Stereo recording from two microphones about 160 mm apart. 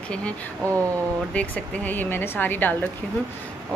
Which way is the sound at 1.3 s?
10° left (ahead or behind).